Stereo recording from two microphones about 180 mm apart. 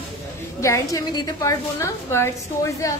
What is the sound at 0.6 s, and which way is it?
A woman's voice, 15° left (ahead or behind).